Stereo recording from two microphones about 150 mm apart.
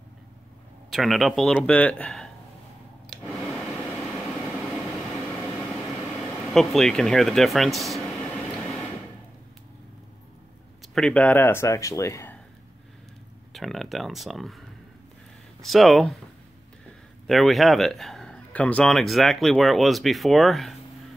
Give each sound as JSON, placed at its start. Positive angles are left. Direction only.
{"t": 0.8, "sound": "speech", "side_deg": 0}
{"t": 3.1, "sound": "a sound", "side_deg": 0}
{"t": 4.1, "sound": "train", "side_deg": 0}
{"t": 6.4, "sound": "speech", "side_deg": 0}
{"t": 11.0, "sound": "speech", "side_deg": 5}
{"t": 13.5, "sound": "speech", "side_deg": 0}
{"t": 15.6, "sound": "speech", "side_deg": 0}
{"t": 17.3, "sound": "speech", "side_deg": 0}